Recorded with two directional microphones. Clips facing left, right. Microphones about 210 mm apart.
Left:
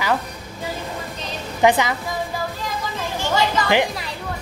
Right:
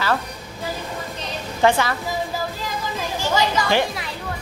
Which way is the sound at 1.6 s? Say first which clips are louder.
Left 1 dB; 15° left (ahead or behind).